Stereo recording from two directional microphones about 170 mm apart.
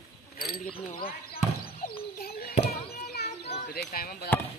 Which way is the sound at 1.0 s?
60° left (ahead or behind).